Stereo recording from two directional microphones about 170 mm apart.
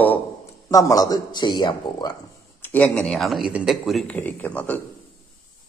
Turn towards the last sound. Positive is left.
turn(degrees=10)  # may be behind; listen again after turning